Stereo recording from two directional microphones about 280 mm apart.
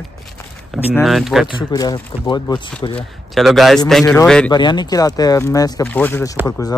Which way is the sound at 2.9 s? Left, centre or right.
Centre.